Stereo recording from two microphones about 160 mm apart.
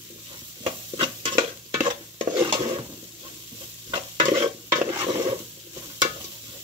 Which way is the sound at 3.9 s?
30° right (ahead or behind).